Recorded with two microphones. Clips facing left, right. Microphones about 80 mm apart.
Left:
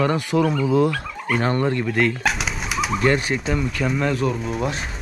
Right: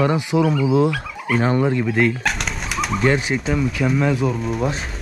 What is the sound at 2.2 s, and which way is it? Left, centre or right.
Speech, centre.